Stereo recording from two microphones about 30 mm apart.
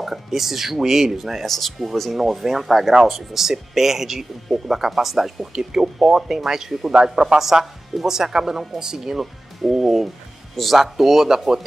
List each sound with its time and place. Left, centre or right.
0.0 s speech: centre
1.4 s speech: centre
2.1 s speech: centre
9.2 s speech: centre
10.5 s speech: centre
10.8 s speech: centre